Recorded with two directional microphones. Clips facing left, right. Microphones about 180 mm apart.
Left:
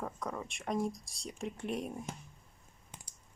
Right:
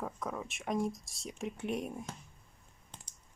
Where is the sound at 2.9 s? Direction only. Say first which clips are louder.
Left 1 dB; 10° left (ahead or behind).